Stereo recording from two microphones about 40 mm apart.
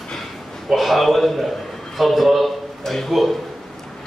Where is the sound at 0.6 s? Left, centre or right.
Centre.